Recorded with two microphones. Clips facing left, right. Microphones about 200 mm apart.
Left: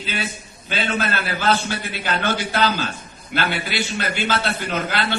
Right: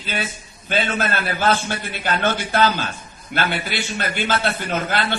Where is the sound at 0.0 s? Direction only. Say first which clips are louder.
Even; 50° right (ahead or behind).